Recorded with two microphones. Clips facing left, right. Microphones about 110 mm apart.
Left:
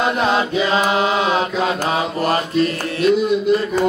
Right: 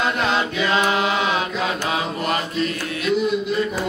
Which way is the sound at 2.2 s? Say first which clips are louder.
Left 7 dB; 35° left (ahead or behind).